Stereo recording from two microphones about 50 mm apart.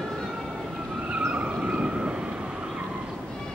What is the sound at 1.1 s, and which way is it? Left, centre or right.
Vehicle, right.